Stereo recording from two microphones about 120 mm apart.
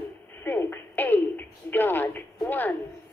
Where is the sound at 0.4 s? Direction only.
15° left (ahead or behind).